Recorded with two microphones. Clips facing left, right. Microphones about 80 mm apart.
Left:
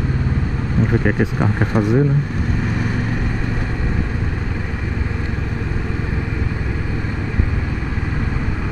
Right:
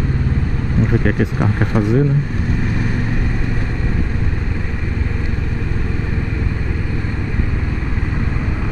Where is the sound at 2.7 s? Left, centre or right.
Centre.